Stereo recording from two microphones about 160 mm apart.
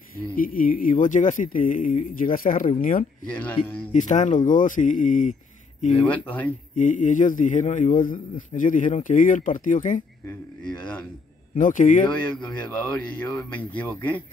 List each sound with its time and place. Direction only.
0.4 s a man's voice: 60° left (ahead or behind)
6.0 s speech: 10° left (ahead or behind)
6.7 s a man's voice: 50° left (ahead or behind)
11.5 s speech: 55° left (ahead or behind)
12.2 s speech: 10° left (ahead or behind)